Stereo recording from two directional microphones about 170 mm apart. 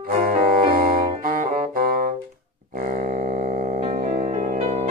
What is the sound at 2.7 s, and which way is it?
Music, 55° right (ahead or behind).